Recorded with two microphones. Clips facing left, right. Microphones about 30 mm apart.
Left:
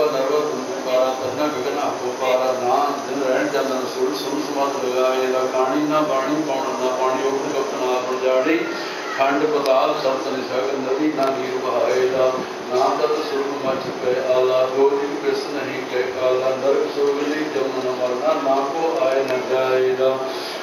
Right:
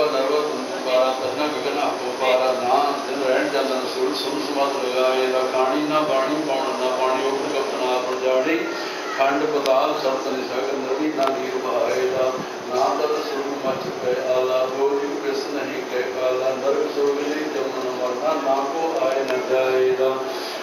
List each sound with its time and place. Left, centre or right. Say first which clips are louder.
0.0 s a sound: left 1 dB; right
0.9 s speech: even; right
8.2 s speech: left 3 dB; centre
11.7 s speech: left 3 dB; centre
14.3 s speech: left 5 dB; centre
18.2 s speech: left 2 dB; centre